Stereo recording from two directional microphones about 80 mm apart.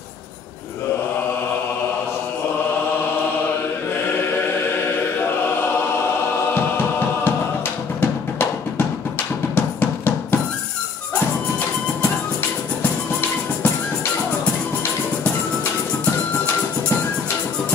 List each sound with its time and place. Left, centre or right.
6.5 s music: left